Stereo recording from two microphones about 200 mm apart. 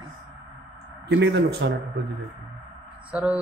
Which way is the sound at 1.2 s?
60° right (ahead or behind).